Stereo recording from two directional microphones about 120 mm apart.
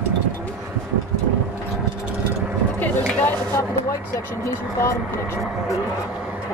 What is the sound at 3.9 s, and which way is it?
Speech, 25° left (ahead or behind).